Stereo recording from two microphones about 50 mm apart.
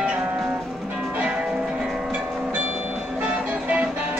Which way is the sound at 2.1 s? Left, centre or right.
Right.